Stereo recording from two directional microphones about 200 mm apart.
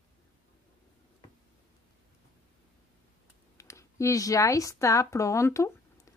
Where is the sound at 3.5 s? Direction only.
15° left (ahead or behind).